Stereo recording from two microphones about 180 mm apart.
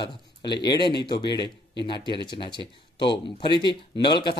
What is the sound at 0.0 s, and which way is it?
Speech, 25° left (ahead or behind).